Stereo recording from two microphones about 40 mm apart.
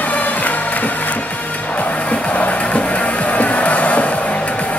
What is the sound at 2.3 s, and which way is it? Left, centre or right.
Music, left.